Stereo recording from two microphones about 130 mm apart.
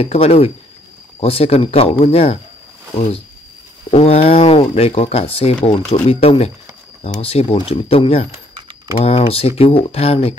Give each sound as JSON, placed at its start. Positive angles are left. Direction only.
{"t": 0.0, "sound": "speech", "side_deg": 50}
{"t": 3.9, "sound": "speech", "side_deg": 50}